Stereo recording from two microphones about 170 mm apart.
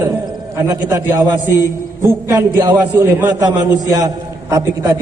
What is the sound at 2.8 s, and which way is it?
A man's voice, 10° right (ahead or behind).